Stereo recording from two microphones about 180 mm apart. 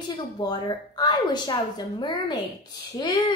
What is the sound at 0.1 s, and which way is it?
A woman's voice, 25° left (ahead or behind).